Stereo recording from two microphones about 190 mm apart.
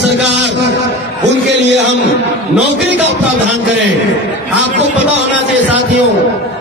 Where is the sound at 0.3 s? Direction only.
65° right (ahead or behind).